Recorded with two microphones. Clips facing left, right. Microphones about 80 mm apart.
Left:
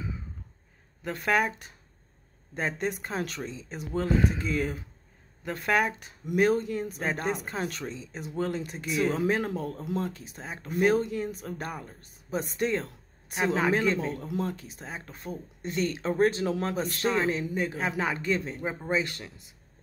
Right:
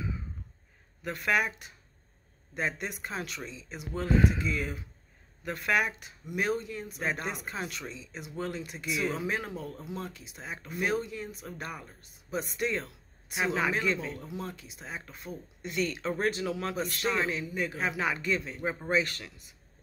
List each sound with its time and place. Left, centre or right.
1.0 s speech: left
5.4 s speech: left